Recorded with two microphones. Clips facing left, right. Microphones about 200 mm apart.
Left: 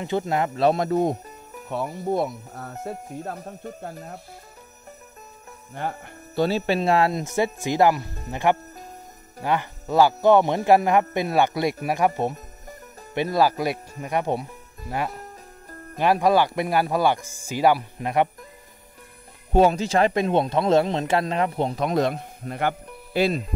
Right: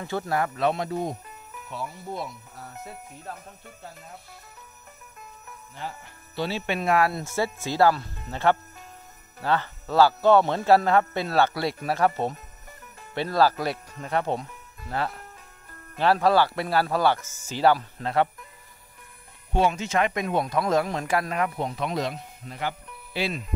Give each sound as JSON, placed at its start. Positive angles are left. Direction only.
{"t": 0.0, "sound": "speech", "side_deg": 20}
{"t": 0.6, "sound": "speech", "side_deg": 40}
{"t": 1.7, "sound": "speech", "side_deg": 55}
{"t": 2.8, "sound": "speech", "side_deg": 45}
{"t": 5.8, "sound": "speech", "side_deg": 50}
{"t": 13.1, "sound": "speech", "side_deg": 15}
{"t": 19.5, "sound": "speech", "side_deg": 40}